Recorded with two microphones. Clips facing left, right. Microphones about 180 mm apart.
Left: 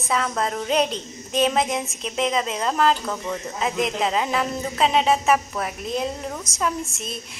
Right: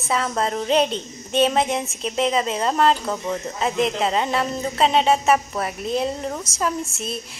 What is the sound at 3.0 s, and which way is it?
Speech, 15° right (ahead or behind).